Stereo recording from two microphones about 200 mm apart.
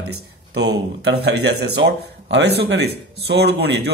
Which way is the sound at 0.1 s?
60° right (ahead or behind).